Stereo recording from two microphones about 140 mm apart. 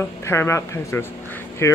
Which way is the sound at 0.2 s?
20° left (ahead or behind).